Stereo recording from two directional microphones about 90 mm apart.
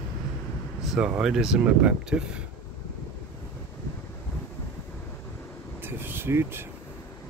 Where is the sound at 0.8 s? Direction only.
10° right (ahead or behind).